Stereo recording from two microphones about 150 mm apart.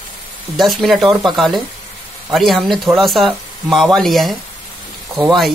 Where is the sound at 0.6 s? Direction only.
Centre (ahead or behind).